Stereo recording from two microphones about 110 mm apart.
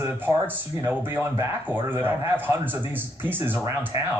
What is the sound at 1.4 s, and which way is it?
Speech, 20° right (ahead or behind).